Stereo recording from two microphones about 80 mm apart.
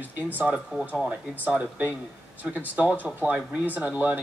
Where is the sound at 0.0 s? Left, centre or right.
Right.